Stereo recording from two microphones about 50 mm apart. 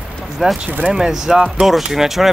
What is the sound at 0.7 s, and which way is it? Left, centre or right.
Speech, right.